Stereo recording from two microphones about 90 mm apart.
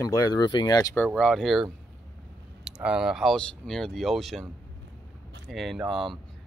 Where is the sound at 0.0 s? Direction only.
45° left (ahead or behind).